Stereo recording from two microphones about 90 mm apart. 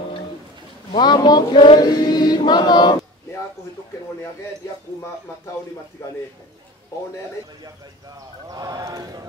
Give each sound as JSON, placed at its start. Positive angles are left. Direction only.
{"t": 0.9, "sound": "a sound", "side_deg": 55}
{"t": 1.8, "sound": "chant", "side_deg": 50}
{"t": 8.5, "sound": "speech", "side_deg": -45}